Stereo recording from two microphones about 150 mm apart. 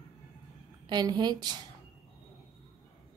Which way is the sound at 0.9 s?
30° right (ahead or behind).